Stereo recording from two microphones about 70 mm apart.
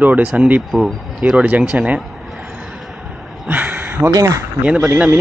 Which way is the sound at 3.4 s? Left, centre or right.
Right.